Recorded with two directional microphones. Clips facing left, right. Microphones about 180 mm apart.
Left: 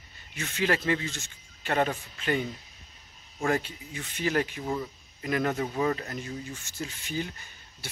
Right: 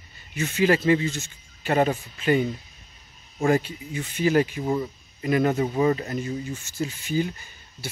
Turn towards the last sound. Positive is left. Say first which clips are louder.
# right 7 dB
turn(degrees=-5)  # may be behind; listen again after turning